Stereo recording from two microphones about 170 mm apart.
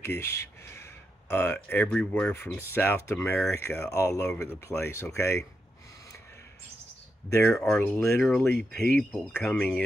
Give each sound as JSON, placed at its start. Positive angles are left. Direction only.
{"t": 0.0, "sound": "speech", "side_deg": 15}
{"t": 7.2, "sound": "speech", "side_deg": 15}